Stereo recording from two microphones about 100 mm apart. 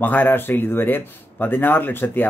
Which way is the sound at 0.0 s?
20° left (ahead or behind).